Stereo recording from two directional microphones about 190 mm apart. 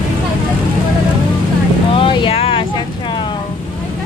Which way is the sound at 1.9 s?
25° left (ahead or behind).